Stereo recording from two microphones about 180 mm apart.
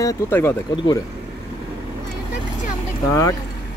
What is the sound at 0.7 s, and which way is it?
Speech, 25° left (ahead or behind).